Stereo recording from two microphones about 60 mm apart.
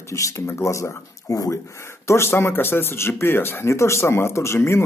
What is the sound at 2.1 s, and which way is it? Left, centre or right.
Speech, left.